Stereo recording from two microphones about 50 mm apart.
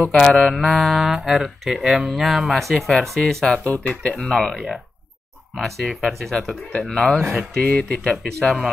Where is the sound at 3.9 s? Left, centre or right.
Centre.